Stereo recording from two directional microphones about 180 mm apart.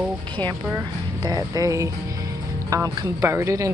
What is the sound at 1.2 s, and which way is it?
Speech, 20° right (ahead or behind).